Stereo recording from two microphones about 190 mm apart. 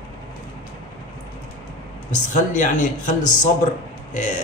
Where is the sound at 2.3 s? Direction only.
40° left (ahead or behind).